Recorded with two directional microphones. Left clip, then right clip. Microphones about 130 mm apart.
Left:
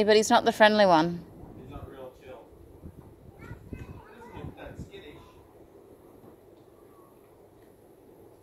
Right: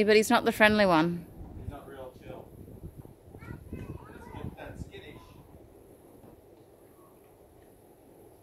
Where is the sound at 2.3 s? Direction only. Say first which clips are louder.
Right 1 dB; 15° right (ahead or behind).